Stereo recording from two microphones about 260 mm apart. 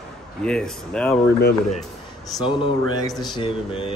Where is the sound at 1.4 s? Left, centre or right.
Left.